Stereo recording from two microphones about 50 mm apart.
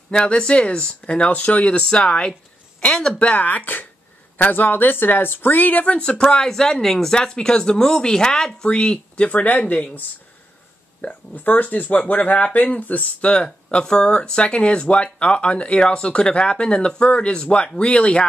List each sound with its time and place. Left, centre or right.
0.1 s speech: centre
1.8 s speech: centre
3.2 s speech: left
5.9 s speech: centre